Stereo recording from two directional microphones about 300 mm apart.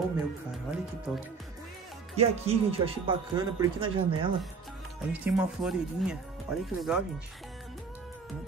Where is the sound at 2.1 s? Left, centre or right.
Centre.